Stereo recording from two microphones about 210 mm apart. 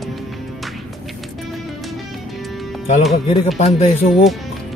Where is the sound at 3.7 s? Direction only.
30° left (ahead or behind).